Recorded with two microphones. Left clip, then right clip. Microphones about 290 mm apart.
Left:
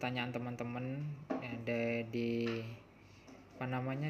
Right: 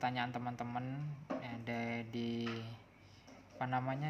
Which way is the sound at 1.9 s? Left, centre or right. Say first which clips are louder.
Left 5 dB; right.